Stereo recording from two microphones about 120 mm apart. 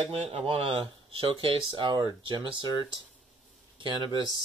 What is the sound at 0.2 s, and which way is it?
Speech, 50° right (ahead or behind).